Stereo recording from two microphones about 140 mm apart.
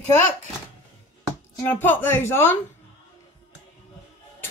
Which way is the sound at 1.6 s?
15° left (ahead or behind).